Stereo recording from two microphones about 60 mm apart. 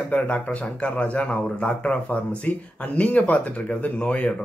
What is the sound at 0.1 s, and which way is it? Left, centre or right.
Speech, left.